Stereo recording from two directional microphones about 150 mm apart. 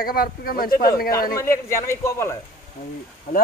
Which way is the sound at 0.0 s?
75° left (ahead or behind).